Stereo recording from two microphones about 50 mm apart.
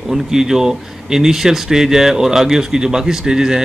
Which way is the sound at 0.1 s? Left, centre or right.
Centre.